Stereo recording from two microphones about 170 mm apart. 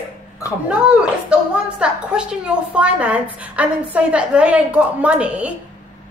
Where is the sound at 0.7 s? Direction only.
5° right (ahead or behind).